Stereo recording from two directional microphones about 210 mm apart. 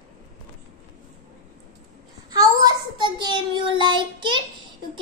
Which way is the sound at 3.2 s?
20° right (ahead or behind).